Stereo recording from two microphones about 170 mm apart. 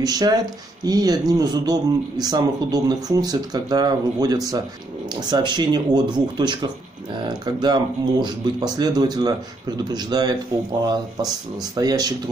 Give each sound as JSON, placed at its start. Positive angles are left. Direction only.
{"t": 0.0, "sound": "speech", "side_deg": -20}
{"t": 11.7, "sound": "speech", "side_deg": -20}